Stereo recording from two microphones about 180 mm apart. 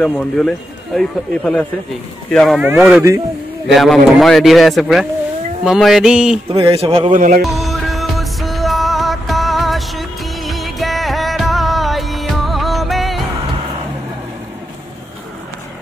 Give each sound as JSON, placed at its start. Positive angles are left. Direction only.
{"t": 0.0, "sound": "a man's voice", "side_deg": 5}
{"t": 6.5, "sound": "speech", "side_deg": -30}
{"t": 7.2, "sound": "music", "side_deg": -45}
{"t": 7.5, "sound": "music", "side_deg": 0}